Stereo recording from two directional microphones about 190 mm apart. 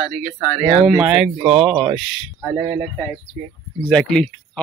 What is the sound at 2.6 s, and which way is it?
Speech, 20° right (ahead or behind).